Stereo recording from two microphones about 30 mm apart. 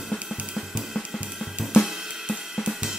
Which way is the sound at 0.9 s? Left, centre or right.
Centre.